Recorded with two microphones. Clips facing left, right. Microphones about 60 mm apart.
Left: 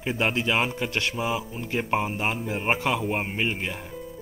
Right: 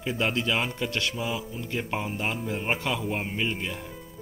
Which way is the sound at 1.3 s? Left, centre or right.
Left.